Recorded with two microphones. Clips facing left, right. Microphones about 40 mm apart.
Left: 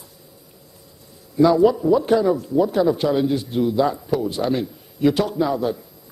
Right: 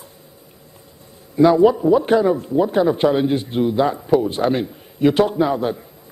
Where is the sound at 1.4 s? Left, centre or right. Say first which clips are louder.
Right 2 dB; right.